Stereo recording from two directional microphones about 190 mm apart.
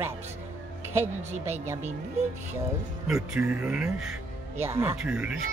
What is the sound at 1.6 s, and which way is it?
Speech, 15° right (ahead or behind).